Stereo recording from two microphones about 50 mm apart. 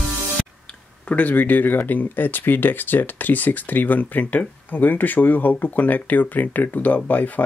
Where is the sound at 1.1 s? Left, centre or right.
Left.